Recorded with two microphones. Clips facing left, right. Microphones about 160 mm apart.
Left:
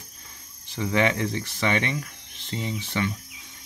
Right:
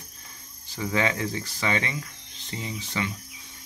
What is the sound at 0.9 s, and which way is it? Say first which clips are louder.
Speech: left 3 dB; 20° left (ahead or behind).